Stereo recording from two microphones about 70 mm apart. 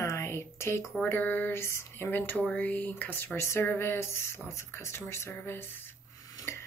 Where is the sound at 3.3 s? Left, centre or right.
Left.